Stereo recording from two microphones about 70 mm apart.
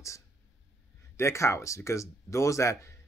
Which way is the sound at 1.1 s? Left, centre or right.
Left.